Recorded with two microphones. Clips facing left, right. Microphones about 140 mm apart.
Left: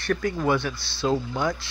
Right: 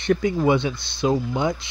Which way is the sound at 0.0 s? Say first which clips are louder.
Right 5 dB; 20° right (ahead or behind).